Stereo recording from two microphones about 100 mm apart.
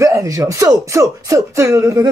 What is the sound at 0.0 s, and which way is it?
A woman's voice, 35° right (ahead or behind).